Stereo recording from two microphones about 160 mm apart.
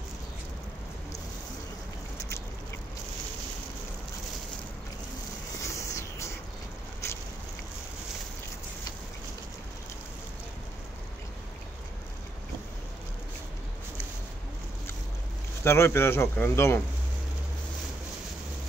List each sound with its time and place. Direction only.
5.6 s vehicle: 20° left (ahead or behind)
15.6 s speech: 15° left (ahead or behind)